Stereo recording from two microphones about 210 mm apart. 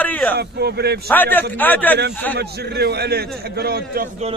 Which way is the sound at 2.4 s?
50° right (ahead or behind).